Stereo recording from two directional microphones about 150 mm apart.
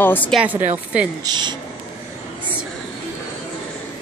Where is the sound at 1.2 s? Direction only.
30° right (ahead or behind).